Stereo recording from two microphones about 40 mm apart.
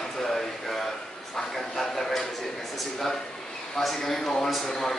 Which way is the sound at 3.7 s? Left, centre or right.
Centre.